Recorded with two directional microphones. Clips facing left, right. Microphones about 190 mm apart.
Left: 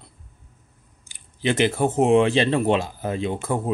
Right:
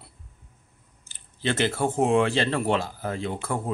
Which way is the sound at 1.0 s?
15° left (ahead or behind).